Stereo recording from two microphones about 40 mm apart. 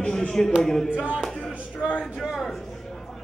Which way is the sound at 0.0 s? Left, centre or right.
Left.